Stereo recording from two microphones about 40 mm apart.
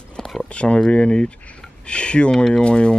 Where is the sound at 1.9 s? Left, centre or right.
Left.